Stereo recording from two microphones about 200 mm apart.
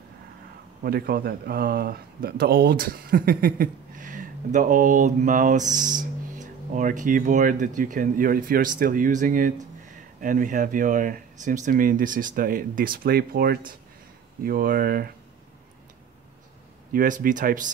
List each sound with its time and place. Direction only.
0.8 s speech: 50° right (ahead or behind)
16.9 s speech: 40° right (ahead or behind)